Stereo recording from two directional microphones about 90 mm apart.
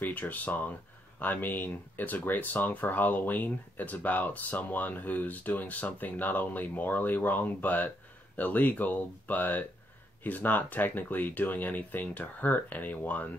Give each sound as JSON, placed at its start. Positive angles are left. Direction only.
{"t": 0.0, "sound": "speech", "side_deg": 20}